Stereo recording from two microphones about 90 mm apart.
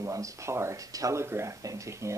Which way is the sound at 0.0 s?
35° right (ahead or behind).